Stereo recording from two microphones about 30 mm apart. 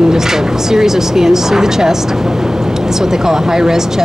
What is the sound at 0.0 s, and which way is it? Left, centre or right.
Speech, centre.